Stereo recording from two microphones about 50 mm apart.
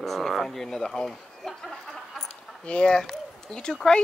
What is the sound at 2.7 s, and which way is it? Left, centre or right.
Speech, centre.